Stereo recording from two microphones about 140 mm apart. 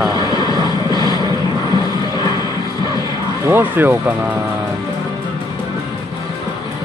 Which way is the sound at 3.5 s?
15° right (ahead or behind).